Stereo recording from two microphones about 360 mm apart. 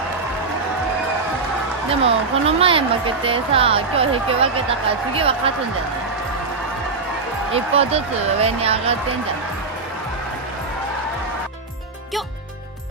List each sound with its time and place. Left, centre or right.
1.9 s speech: centre
7.5 s speech: centre